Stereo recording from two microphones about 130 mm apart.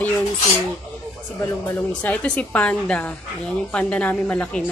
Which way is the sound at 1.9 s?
10° left (ahead or behind).